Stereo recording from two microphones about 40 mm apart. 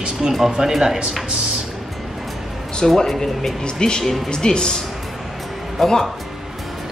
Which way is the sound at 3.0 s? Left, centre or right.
Centre.